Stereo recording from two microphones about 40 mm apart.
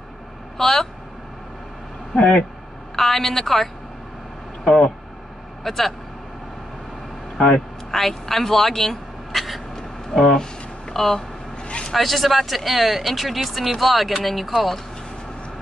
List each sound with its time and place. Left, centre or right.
0.6 s a woman's voice: centre
2.1 s speech: left
3.0 s a woman's voice: centre
4.6 s speech: centre
5.6 s a woman's voice: centre
7.3 s vehicle: centre
8.0 s speech: centre
10.2 s a sound: centre
11.0 s a woman's voice: centre
11.5 s vehicle: left
11.9 s speech: centre